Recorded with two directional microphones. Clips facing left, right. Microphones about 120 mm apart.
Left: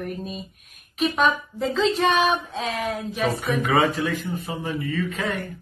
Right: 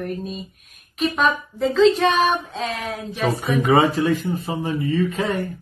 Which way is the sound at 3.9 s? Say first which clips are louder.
Right 6 dB; 35° right (ahead or behind).